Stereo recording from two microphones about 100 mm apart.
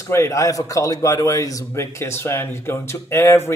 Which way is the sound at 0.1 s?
30° left (ahead or behind).